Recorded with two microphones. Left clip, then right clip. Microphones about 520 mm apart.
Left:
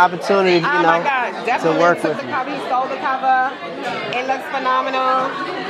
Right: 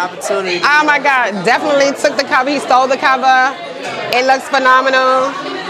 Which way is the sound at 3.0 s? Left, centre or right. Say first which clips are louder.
Right 6 dB; right.